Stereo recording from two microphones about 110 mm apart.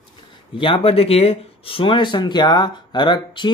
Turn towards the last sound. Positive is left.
turn(degrees=45)  # may be behind; listen again after turning